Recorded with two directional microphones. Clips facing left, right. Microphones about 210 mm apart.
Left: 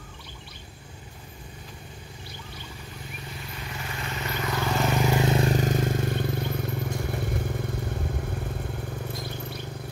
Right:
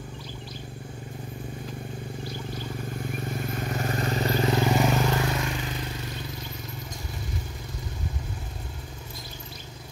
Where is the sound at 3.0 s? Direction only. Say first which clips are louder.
Right 9 dB; 50° right (ahead or behind); by 4.8 s 25° right (ahead or behind).